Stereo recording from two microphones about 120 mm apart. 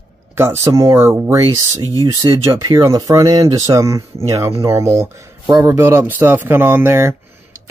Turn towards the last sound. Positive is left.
turn(degrees=-20)  # may be behind; listen again after turning